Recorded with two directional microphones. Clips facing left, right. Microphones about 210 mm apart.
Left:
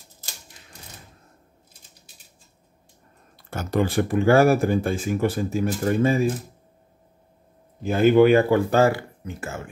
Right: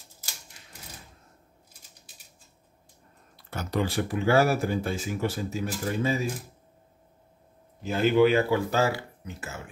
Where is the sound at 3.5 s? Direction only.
50° left (ahead or behind).